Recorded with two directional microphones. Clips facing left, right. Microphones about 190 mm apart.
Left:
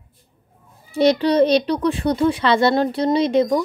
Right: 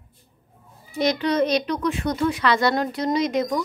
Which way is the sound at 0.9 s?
30° left (ahead or behind).